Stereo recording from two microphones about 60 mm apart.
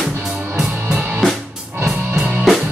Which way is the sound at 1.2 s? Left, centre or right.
Centre.